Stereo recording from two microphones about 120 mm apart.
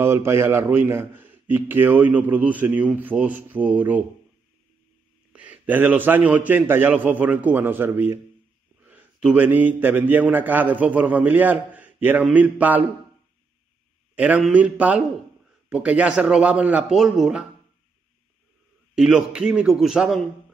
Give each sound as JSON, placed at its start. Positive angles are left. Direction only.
{"t": 0.0, "sound": "a man's voice", "side_deg": -20}
{"t": 5.3, "sound": "a man's voice", "side_deg": -10}
{"t": 14.1, "sound": "a man's voice", "side_deg": -15}
{"t": 18.9, "sound": "a man's voice", "side_deg": -5}